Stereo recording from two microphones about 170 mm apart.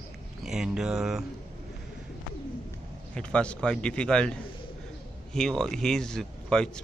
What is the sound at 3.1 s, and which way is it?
Speech, 5° left (ahead or behind).